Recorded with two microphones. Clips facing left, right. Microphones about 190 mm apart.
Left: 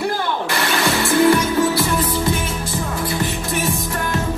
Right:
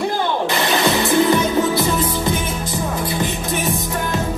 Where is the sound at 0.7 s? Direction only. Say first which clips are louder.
Right 1 dB; 20° right (ahead or behind).